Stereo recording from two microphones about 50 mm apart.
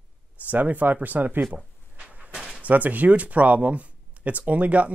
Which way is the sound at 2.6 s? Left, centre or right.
Right.